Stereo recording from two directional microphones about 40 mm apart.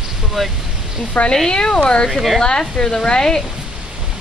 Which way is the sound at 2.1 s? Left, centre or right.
Centre.